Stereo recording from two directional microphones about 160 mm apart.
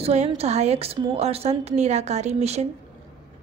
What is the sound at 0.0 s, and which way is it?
A woman's voice, 45° right (ahead or behind).